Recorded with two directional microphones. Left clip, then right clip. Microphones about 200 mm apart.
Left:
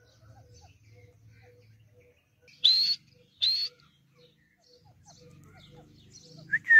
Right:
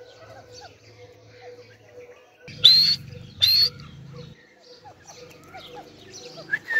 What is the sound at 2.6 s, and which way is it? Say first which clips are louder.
Bird: right 8 dB; 20° right (ahead or behind).